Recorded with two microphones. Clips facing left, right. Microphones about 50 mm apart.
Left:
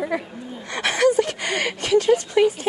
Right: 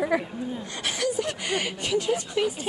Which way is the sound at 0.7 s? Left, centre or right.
Left.